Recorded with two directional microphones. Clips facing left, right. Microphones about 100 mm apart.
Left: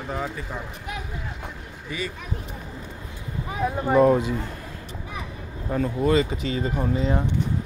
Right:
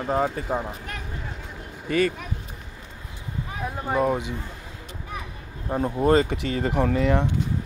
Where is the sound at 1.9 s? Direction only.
55° right (ahead or behind).